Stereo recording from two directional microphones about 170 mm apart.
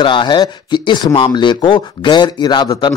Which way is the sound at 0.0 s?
30° left (ahead or behind).